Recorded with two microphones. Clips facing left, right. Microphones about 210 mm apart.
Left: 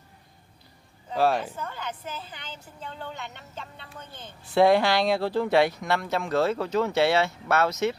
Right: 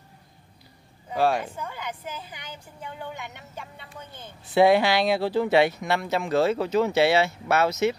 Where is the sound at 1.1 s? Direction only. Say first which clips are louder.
Even; centre (ahead or behind).